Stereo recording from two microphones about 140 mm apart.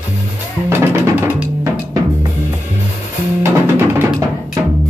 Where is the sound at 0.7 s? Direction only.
15° right (ahead or behind).